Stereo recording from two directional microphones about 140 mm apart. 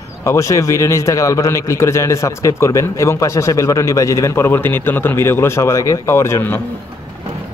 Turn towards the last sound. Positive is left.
turn(degrees=15)  # may be behind; listen again after turning